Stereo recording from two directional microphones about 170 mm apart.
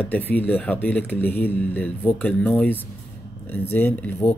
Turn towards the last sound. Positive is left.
turn(degrees=10)  # may be behind; listen again after turning